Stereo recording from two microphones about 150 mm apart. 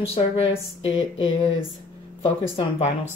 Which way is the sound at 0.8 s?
40° left (ahead or behind).